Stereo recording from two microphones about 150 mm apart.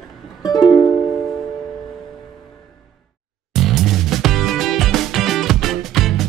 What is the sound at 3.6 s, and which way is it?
Music, centre (ahead or behind).